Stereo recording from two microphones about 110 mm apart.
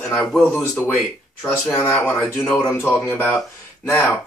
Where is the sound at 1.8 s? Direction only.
10° left (ahead or behind).